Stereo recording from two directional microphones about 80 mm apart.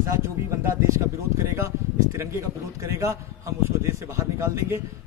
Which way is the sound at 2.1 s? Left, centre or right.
Right.